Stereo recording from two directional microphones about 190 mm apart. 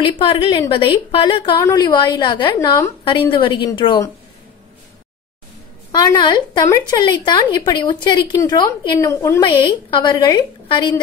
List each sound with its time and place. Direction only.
0.0 s a woman's voice: 25° left (ahead or behind)
5.9 s a woman's voice: 20° left (ahead or behind)